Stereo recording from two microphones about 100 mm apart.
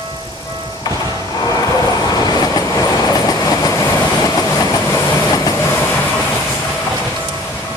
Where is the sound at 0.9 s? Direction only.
40° left (ahead or behind).